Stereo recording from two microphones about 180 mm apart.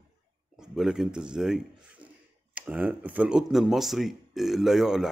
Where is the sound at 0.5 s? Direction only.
5° right (ahead or behind).